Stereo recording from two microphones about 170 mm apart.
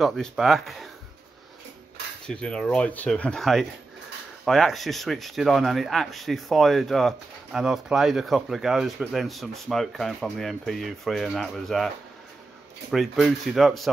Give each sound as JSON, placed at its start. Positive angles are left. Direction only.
{"t": 0.0, "sound": "speech", "side_deg": 0}
{"t": 2.2, "sound": "speech", "side_deg": 5}
{"t": 12.9, "sound": "speech", "side_deg": 0}